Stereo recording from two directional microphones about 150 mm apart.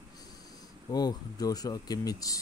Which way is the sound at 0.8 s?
25° left (ahead or behind).